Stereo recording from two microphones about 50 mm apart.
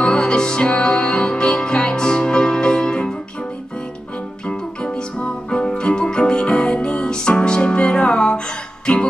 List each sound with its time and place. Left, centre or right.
0.0 s music: centre
4.5 s music: centre